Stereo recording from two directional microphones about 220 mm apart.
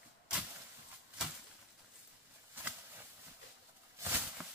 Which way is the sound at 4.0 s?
5° right (ahead or behind).